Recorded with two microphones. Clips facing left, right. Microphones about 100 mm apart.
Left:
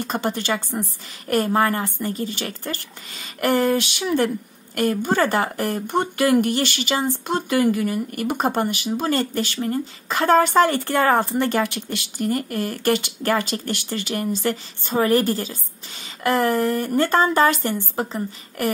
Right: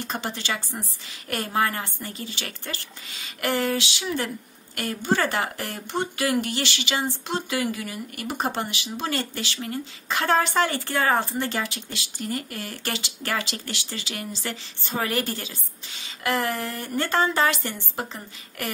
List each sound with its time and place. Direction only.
0.0 s speech: 50° left (ahead or behind)